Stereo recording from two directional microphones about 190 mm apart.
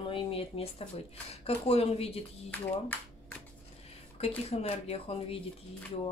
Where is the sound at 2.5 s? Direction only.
10° left (ahead or behind).